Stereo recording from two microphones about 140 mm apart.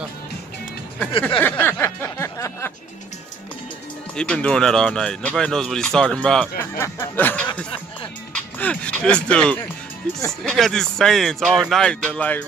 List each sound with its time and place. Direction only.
1.4 s speech: 15° left (ahead or behind)
2.0 s a sound: 20° left (ahead or behind)
4.1 s speech: 5° left (ahead or behind)
8.5 s speech: 10° left (ahead or behind)